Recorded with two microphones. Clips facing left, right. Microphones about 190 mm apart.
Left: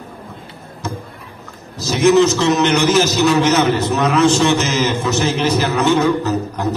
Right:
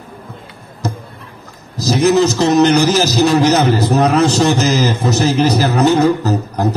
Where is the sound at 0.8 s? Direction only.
35° right (ahead or behind).